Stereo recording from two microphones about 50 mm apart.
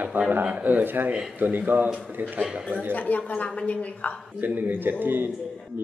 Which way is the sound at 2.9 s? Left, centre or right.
Left.